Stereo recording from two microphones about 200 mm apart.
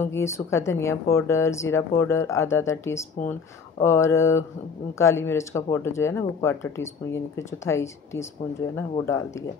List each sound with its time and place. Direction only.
0.0 s speech: 15° left (ahead or behind)